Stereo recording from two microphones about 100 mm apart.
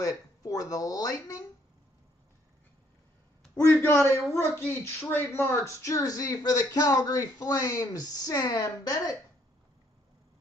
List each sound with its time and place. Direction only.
0.0 s speech: 35° left (ahead or behind)
3.5 s speech: 25° left (ahead or behind)